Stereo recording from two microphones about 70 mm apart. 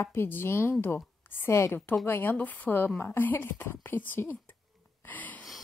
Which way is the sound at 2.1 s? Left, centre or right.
Left.